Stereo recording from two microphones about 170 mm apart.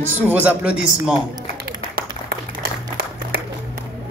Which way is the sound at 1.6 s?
65° right (ahead or behind).